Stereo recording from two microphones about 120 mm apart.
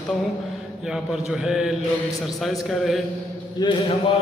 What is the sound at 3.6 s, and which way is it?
Speech, 40° left (ahead or behind).